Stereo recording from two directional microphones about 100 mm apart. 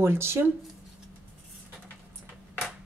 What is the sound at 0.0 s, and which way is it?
Speech, 25° right (ahead or behind).